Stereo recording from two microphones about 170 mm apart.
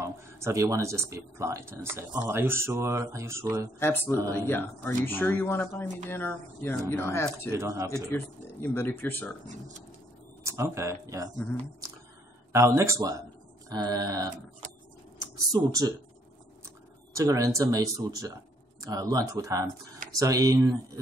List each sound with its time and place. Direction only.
0.0 s speech: 15° right (ahead or behind)
3.8 s speech: 10° left (ahead or behind)
7.5 s speech: 15° right (ahead or behind)
8.1 s speech: 10° left (ahead or behind)
9.5 s speech: 45° right (ahead or behind)
10.4 s speech: 15° right (ahead or behind)
12.5 s speech: 15° right (ahead or behind)
15.5 s speech: 20° right (ahead or behind)